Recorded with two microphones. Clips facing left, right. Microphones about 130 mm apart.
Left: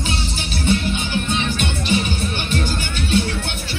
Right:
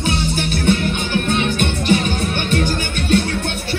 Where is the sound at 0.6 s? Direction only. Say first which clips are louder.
Right 1 dB; 55° right (ahead or behind).